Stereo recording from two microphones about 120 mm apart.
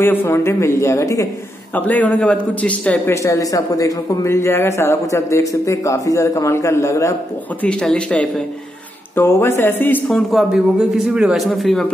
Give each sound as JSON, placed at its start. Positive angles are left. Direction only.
{"t": 0.0, "sound": "a man's voice", "side_deg": 20}
{"t": 1.8, "sound": "a man's voice", "side_deg": 15}
{"t": 3.1, "sound": "a man's voice", "side_deg": 25}
{"t": 7.6, "sound": "a man's voice", "side_deg": 10}
{"t": 9.1, "sound": "a man's voice", "side_deg": 20}
{"t": 10.0, "sound": "a man's voice", "side_deg": 5}
{"t": 10.5, "sound": "a man's voice", "side_deg": -5}